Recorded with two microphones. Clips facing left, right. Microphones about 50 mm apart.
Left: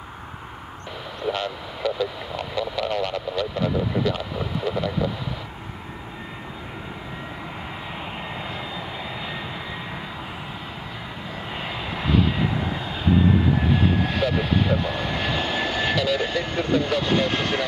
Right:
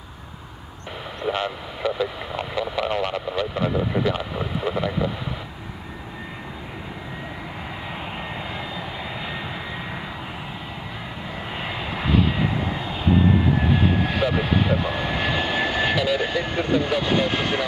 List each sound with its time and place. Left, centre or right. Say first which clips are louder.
1.2 s speech: right 1 dB; right
8.5 s vehicle: right 1 dB; centre
11.5 s vehicle: right 1 dB; centre